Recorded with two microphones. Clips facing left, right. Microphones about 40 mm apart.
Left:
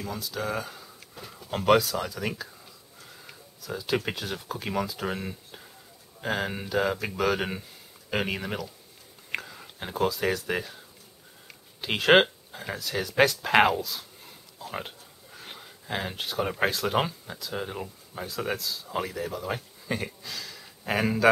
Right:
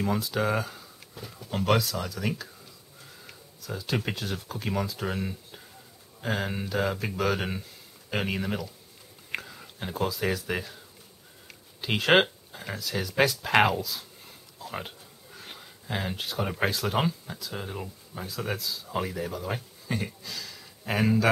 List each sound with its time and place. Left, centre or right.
0.0 s speech: right
0.6 s speech: centre